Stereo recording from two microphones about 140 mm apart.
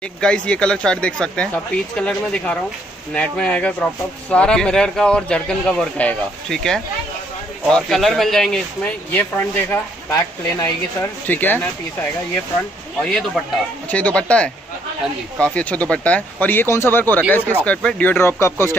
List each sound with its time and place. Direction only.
0.2 s speech: 5° left (ahead or behind)
10.1 s speech: 25° left (ahead or behind)
11.2 s speech: 10° left (ahead or behind)
13.0 s speech: 5° left (ahead or behind)